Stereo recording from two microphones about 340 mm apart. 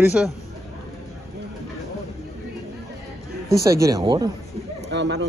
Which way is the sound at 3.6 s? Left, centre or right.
Centre.